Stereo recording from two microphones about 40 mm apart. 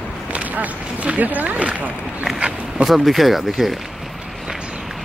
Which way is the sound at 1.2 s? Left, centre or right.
Right.